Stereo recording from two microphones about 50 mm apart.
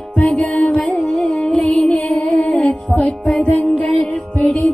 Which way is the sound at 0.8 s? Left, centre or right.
Centre.